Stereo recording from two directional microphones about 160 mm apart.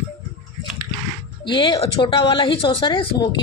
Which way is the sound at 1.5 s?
30° left (ahead or behind).